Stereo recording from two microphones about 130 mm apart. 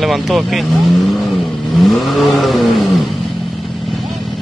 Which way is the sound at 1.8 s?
Centre (ahead or behind).